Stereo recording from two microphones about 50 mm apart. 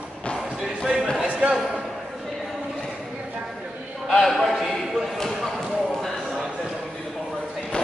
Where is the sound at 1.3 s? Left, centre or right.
Centre.